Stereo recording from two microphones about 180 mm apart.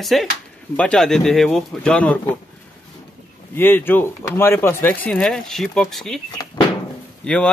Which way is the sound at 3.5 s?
10° left (ahead or behind).